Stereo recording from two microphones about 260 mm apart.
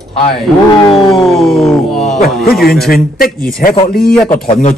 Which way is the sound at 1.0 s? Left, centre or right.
Centre.